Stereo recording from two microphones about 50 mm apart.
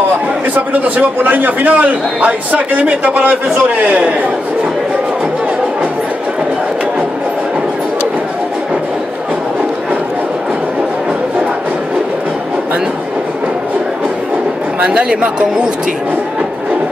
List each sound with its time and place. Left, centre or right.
0.6 s a man's voice: right
14.8 s a man's voice: right